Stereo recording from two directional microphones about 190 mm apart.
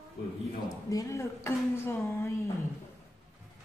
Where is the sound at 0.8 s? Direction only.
15° left (ahead or behind).